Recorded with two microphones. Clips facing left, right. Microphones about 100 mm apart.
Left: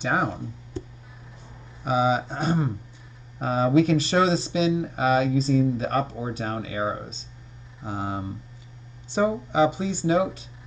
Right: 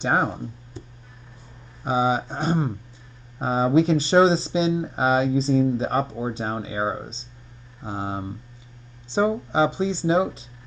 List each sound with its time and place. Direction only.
0.0 s speech: 30° right (ahead or behind)
1.9 s speech: 25° right (ahead or behind)